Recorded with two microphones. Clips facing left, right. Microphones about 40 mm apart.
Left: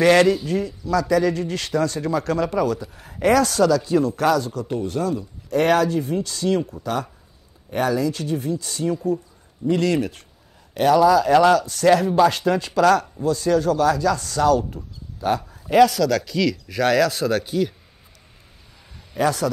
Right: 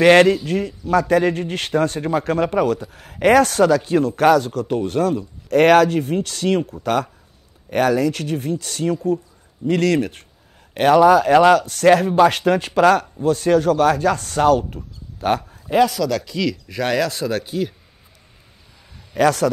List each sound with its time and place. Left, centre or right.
0.0 s a man's voice: right
9.9 s a man's voice: right
15.5 s speech: centre
19.1 s a man's voice: right